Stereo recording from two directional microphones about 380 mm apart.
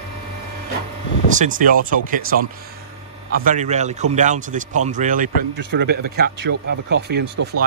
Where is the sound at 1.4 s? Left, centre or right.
Right.